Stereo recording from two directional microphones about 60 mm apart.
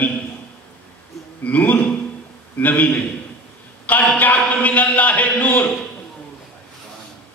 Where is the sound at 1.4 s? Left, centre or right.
Left.